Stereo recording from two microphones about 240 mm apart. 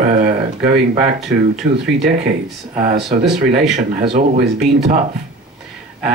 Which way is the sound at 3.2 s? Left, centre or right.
Right.